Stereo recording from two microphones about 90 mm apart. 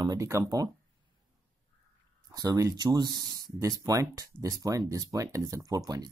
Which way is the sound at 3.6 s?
35° right (ahead or behind).